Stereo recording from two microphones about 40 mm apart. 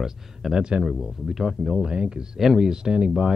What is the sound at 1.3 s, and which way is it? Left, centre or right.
Speech, centre.